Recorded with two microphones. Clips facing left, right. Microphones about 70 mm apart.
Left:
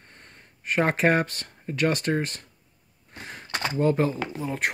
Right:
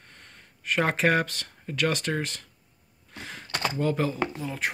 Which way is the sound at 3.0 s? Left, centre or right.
Left.